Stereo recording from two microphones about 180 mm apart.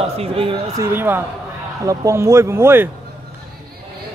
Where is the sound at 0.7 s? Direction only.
10° right (ahead or behind).